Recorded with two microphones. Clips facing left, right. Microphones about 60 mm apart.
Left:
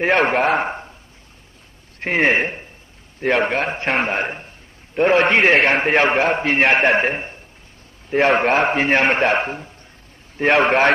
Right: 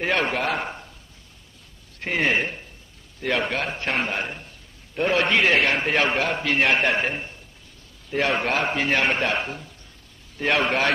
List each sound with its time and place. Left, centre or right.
0.0 s a man's voice: left
2.0 s a man's voice: left